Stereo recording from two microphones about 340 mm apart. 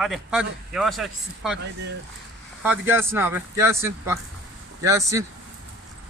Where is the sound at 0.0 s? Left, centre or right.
Centre.